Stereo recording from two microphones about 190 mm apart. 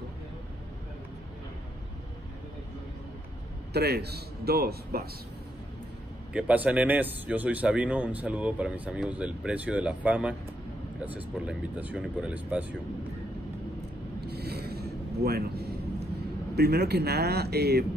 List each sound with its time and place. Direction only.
3.7 s a man's voice: 60° right (ahead or behind)
6.3 s a man's voice: 5° right (ahead or behind)
14.2 s mechanisms: 60° right (ahead or behind)
16.5 s a man's voice: 60° right (ahead or behind)